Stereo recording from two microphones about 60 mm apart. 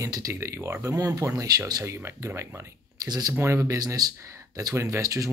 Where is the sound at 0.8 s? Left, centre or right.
Right.